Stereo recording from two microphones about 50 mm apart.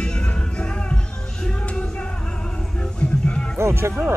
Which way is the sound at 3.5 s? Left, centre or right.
Right.